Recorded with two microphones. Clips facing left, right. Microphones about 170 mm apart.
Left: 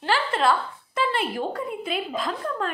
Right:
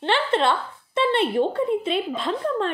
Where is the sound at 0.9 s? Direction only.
25° right (ahead or behind).